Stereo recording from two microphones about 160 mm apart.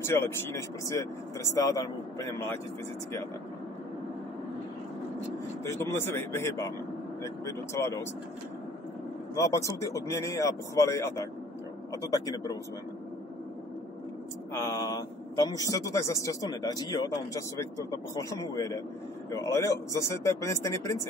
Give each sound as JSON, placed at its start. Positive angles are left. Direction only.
{"t": 0.0, "sound": "speech", "side_deg": 15}
{"t": 5.7, "sound": "speech", "side_deg": 15}
{"t": 9.3, "sound": "a man's voice", "side_deg": 20}
{"t": 14.7, "sound": "a man's voice", "side_deg": 25}